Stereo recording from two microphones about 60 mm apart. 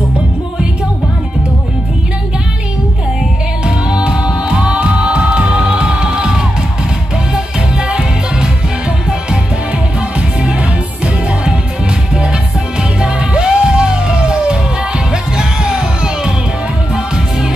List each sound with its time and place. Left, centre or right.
3.6 s music: centre
12.1 s music: centre